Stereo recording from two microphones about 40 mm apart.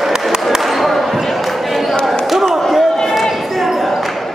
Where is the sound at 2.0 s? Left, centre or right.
Centre.